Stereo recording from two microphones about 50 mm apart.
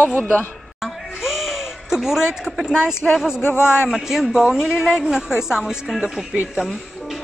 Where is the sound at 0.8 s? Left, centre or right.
Centre.